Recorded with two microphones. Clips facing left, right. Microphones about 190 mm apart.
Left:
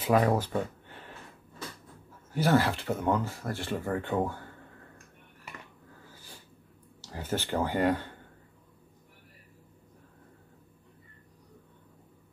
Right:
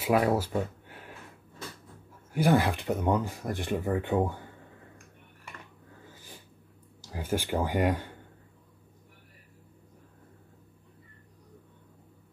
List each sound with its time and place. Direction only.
0.0 s speech: 10° right (ahead or behind)
2.3 s speech: 15° right (ahead or behind)
6.1 s snort: 15° right (ahead or behind)
7.0 s speech: 10° right (ahead or behind)